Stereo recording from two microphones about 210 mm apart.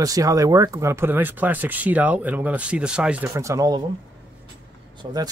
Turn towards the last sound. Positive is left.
turn(degrees=-20)  # may be behind; listen again after turning